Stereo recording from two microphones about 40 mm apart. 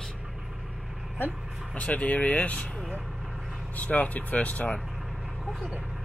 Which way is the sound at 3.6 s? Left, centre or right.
Left.